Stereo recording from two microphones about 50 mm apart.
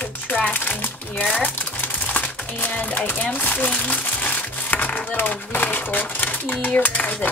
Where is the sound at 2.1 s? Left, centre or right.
Left.